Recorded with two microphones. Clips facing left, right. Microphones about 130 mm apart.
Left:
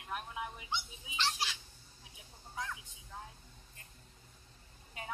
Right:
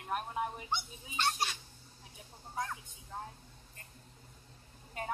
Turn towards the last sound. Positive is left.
turn(degrees=-50)  # may be behind; listen again after turning